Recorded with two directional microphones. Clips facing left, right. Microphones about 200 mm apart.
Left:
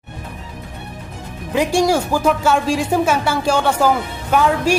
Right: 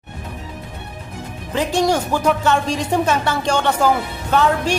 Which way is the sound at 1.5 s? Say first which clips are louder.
Left 2 dB; 10° left (ahead or behind).